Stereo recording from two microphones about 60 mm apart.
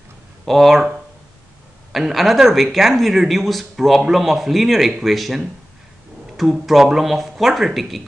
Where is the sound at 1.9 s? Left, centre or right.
Centre.